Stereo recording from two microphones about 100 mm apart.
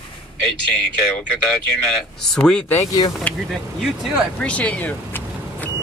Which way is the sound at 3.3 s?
15° left (ahead or behind).